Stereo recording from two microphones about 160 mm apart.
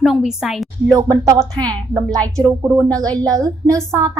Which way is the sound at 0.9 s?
25° right (ahead or behind).